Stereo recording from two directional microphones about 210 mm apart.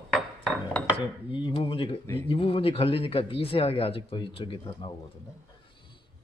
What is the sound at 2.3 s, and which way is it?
Speech, 25° left (ahead or behind).